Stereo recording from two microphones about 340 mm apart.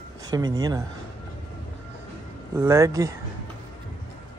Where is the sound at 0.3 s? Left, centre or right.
Centre.